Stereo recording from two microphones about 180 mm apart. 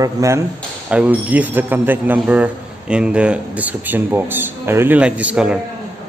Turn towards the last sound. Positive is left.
turn(degrees=-5)  # may be behind; listen again after turning